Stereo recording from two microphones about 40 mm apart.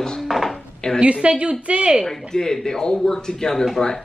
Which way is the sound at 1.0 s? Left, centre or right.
Right.